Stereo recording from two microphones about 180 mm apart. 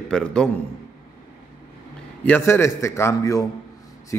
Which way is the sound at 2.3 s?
10° left (ahead or behind).